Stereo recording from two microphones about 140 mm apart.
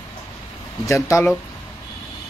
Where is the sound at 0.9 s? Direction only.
20° left (ahead or behind).